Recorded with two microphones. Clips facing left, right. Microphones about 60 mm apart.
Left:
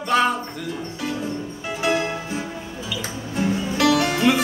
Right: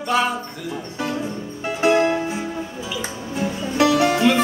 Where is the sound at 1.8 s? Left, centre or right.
Right.